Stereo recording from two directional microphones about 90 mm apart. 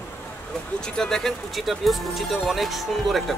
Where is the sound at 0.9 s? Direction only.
5° left (ahead or behind).